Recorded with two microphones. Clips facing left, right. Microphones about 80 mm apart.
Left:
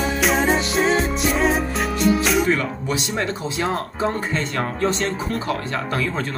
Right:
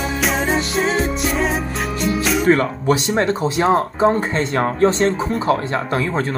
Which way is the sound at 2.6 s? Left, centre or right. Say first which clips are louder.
Right 7 dB; right.